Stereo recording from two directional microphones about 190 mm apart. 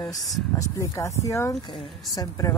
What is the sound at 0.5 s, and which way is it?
Speech, 15° left (ahead or behind).